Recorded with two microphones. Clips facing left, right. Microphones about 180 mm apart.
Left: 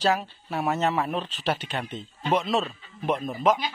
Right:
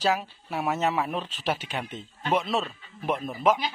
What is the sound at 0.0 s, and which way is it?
A man's voice, 5° right (ahead or behind).